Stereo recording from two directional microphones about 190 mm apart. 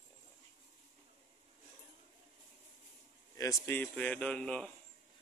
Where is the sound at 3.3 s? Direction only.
15° left (ahead or behind).